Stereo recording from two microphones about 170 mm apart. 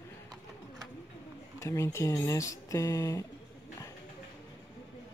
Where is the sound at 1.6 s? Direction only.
15° left (ahead or behind).